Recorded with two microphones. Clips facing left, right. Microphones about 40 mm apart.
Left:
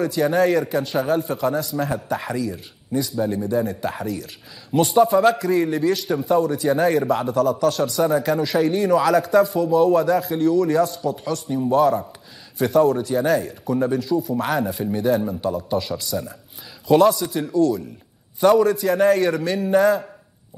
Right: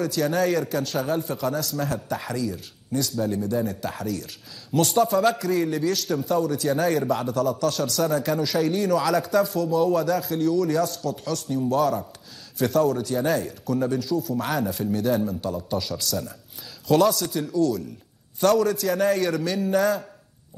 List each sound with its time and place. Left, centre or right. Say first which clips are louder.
0.0 s a man's voice: left 4 dB; centre